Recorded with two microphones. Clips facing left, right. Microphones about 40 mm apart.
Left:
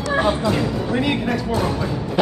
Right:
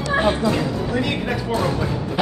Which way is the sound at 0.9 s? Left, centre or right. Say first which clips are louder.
Left 2 dB; left.